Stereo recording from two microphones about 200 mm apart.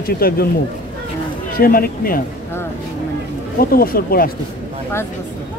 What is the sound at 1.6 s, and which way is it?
Speech, 50° left (ahead or behind).